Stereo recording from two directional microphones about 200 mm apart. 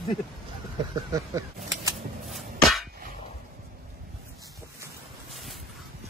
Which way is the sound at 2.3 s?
Centre (ahead or behind).